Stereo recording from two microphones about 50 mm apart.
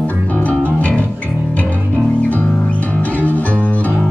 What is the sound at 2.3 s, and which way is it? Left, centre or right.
Music, left.